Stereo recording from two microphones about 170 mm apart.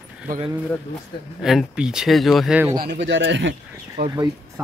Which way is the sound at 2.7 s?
80° right.